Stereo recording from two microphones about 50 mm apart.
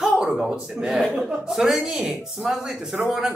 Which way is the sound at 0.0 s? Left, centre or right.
Centre.